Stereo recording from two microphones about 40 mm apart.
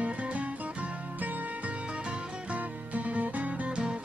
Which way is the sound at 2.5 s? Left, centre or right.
Right.